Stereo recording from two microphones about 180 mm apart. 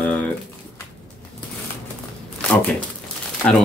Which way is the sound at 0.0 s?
10° left (ahead or behind).